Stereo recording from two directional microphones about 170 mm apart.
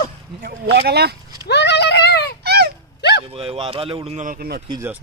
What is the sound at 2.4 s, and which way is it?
Dog, 70° right (ahead or behind).